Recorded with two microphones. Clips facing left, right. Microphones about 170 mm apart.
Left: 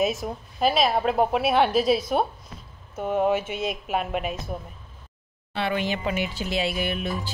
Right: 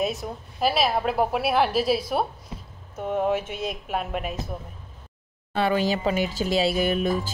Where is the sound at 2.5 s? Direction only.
25° right (ahead or behind).